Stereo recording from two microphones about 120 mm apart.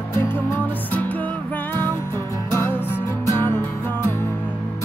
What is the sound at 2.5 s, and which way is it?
Music, 20° left (ahead or behind).